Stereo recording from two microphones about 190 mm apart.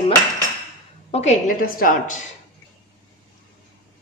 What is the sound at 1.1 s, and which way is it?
A woman's voice, 35° left (ahead or behind).